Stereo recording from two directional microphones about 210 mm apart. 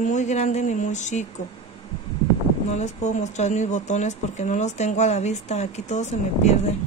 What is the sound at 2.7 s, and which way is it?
A woman's voice, 35° left (ahead or behind).